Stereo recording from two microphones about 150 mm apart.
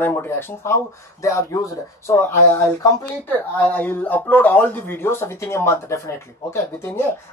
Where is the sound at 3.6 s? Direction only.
10° left (ahead or behind).